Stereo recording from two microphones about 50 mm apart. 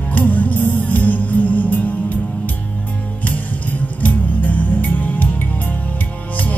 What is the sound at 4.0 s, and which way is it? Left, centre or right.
Music, left.